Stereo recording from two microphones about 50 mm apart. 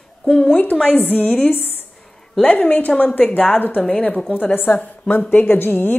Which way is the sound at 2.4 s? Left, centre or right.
Left.